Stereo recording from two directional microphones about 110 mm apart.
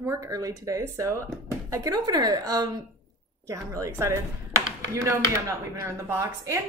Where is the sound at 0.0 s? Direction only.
25° right (ahead or behind).